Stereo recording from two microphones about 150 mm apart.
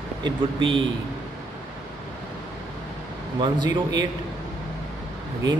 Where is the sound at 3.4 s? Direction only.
30° right (ahead or behind).